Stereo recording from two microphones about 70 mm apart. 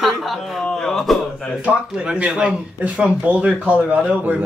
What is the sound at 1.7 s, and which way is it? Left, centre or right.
A man's voice, centre.